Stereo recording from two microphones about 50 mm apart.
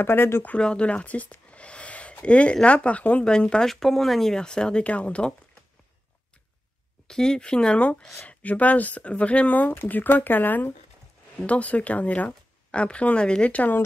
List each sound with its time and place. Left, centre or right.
0.0 s speech: left
0.6 s a sound: left
2.2 s speech: left
3.3 s speech: centre
3.6 s speech: centre; by 5.3 s left
7.1 s speech: centre; by 10.7 s left
11.3 s speech: left